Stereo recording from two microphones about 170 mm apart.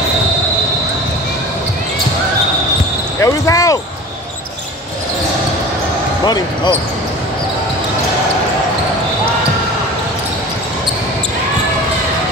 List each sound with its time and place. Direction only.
3.2 s basketball bounce: 20° left (ahead or behind)
6.2 s speech: 25° left (ahead or behind)